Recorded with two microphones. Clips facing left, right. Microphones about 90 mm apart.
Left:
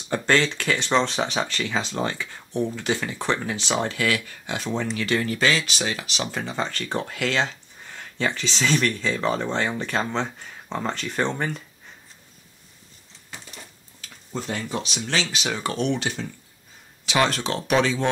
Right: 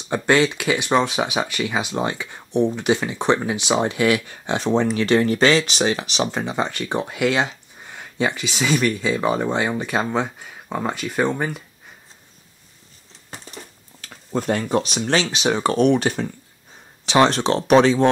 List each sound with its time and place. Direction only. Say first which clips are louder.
0.1 s speech: right 4 dB; 15° right (ahead or behind)
14.0 s speech: right 8 dB; 50° right (ahead or behind)
15.3 s speech: right 7 dB; 30° right (ahead or behind)
15.8 s speech: right 8 dB; 50° right (ahead or behind)
17.0 s speech: right 6 dB; 30° right (ahead or behind)